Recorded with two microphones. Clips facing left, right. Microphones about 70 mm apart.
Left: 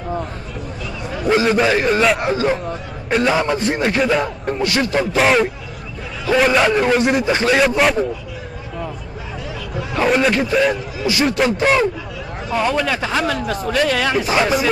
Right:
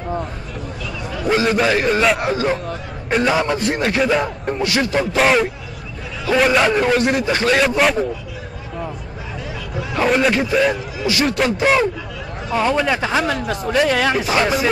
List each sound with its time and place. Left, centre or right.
1.5 s speech: centre
9.8 s speech: centre
12.5 s a man's voice: centre
14.2 s speech: centre